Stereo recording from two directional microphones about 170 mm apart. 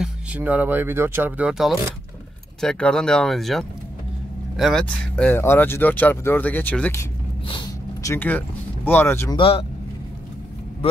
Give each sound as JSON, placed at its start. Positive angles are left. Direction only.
{"t": 0.0, "sound": "speech", "side_deg": -10}
{"t": 7.4, "sound": "a sound", "side_deg": 25}
{"t": 8.1, "sound": "speech", "side_deg": 10}
{"t": 9.4, "sound": "speech", "side_deg": 35}